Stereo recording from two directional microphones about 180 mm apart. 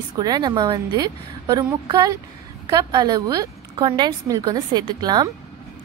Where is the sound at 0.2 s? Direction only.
25° right (ahead or behind).